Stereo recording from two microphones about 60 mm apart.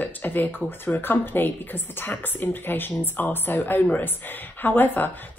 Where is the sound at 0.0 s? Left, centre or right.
Left.